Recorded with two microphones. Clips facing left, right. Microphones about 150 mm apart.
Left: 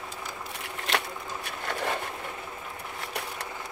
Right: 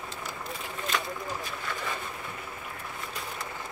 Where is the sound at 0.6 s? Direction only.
70° left (ahead or behind).